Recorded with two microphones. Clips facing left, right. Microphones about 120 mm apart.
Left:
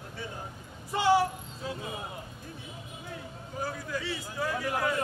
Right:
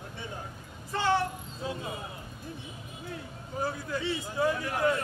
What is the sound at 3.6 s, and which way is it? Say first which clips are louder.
Speech: right 2 dB; 25° right (ahead or behind).